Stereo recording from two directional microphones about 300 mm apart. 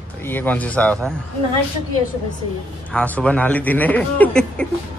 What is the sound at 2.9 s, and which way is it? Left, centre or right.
A man's voice, centre.